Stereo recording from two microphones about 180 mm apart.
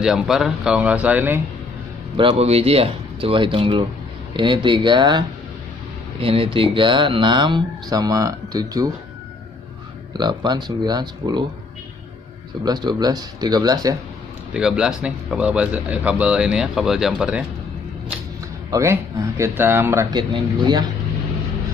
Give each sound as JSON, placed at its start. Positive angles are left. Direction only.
{"t": 0.0, "sound": "speech", "side_deg": 0}
{"t": 2.1, "sound": "speech", "side_deg": -30}
{"t": 6.2, "sound": "speech", "side_deg": -30}
{"t": 10.1, "sound": "speech", "side_deg": -20}
{"t": 12.6, "sound": "speech", "side_deg": -25}
{"t": 14.5, "sound": "speech", "side_deg": -5}
{"t": 18.7, "sound": "speech", "side_deg": -15}